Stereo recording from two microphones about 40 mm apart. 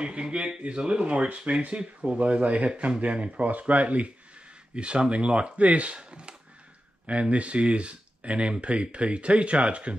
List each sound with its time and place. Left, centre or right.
0.0 s speech: right
4.7 s speech: right